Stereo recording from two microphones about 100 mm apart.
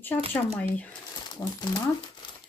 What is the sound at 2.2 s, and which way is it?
Crumpling, 50° left (ahead or behind).